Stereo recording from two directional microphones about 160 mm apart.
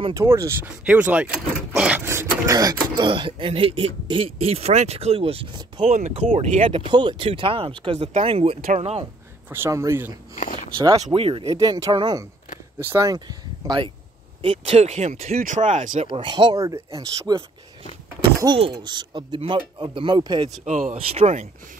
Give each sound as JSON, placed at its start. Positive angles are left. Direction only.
{"t": 0.1, "sound": "speech", "side_deg": -20}
{"t": 5.9, "sound": "speech", "side_deg": -45}
{"t": 9.5, "sound": "speech", "side_deg": -15}
{"t": 10.3, "sound": "speech", "side_deg": 50}
{"t": 11.1, "sound": "speech", "side_deg": -35}
{"t": 16.1, "sound": "speech", "side_deg": -30}
{"t": 16.6, "sound": "speech", "side_deg": -20}
{"t": 18.6, "sound": "speech", "side_deg": -30}
{"t": 20.6, "sound": "speech", "side_deg": -50}